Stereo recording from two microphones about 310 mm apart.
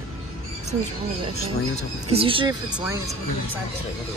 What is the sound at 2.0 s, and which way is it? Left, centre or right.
Speech, centre.